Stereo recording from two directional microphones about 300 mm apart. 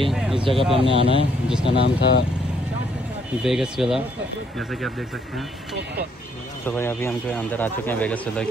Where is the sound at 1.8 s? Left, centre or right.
Left.